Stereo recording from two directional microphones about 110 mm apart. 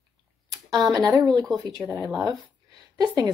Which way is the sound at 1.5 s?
35° right (ahead or behind).